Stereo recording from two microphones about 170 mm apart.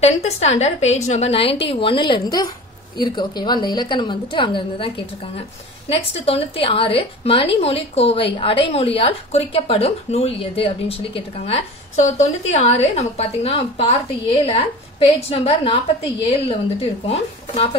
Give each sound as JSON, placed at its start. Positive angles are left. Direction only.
{"t": 0.0, "sound": "a woman's voice", "side_deg": 40}
{"t": 5.9, "sound": "speech", "side_deg": 35}